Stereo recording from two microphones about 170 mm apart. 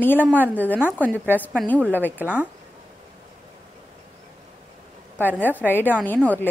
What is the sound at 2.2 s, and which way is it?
Speech, 10° right (ahead or behind).